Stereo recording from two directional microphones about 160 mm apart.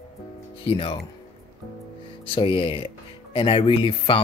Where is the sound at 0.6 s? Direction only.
35° left (ahead or behind).